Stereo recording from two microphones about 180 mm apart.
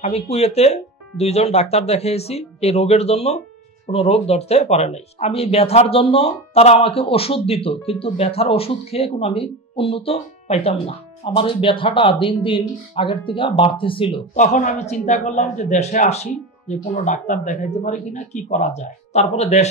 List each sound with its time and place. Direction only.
0.0 s speech: 35° left (ahead or behind)
14.3 s speech: 45° left (ahead or behind)